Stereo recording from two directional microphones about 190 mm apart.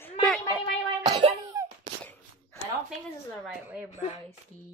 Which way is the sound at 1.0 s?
20° right (ahead or behind).